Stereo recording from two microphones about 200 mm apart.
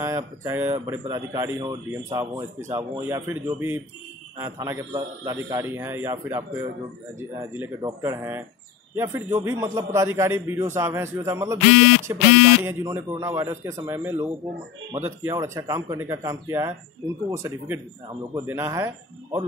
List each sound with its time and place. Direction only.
0.0 s a man's voice: 15° right (ahead or behind)